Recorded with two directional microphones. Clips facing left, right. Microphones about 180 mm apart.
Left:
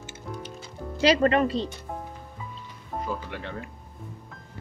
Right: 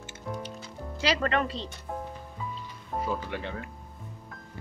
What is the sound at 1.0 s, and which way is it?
Speech, 20° left (ahead or behind).